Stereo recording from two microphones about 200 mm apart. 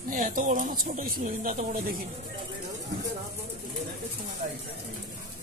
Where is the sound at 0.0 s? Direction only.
40° right (ahead or behind).